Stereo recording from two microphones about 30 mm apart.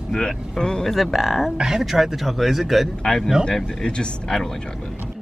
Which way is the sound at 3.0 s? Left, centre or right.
Centre.